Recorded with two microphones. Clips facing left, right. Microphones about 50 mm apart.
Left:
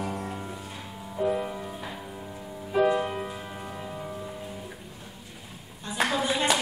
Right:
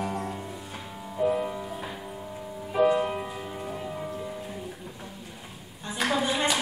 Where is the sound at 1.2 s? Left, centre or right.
Centre.